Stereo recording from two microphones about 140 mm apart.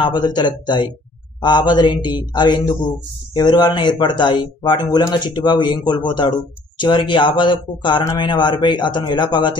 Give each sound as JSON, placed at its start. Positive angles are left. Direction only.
{"t": 0.0, "sound": "speech", "side_deg": 30}